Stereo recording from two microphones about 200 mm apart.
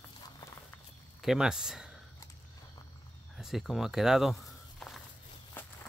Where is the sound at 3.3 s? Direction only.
Centre (ahead or behind).